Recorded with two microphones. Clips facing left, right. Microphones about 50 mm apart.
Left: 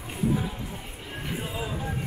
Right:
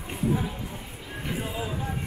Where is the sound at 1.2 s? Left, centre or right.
Centre.